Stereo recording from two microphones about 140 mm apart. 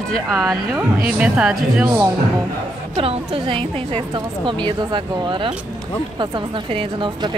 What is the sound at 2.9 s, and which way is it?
A woman's voice, 45° right (ahead or behind).